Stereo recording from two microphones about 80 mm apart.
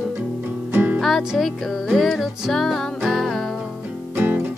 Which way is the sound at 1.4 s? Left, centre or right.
Centre.